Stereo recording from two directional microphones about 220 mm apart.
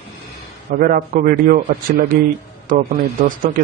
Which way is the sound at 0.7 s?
40° right (ahead or behind).